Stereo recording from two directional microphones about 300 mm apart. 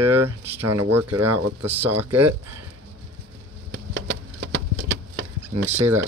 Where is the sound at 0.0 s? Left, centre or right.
Right.